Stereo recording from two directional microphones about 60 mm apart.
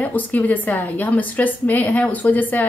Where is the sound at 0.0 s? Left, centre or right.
Left.